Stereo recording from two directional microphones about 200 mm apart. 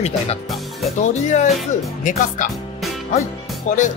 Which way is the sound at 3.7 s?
40° left (ahead or behind).